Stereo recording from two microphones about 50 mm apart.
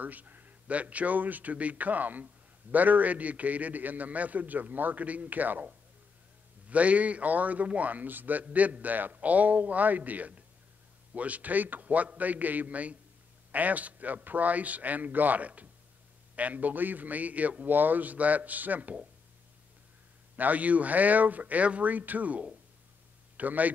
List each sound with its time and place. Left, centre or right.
0.0 s a man's voice: right
6.7 s a man's voice: right
20.3 s a man's voice: right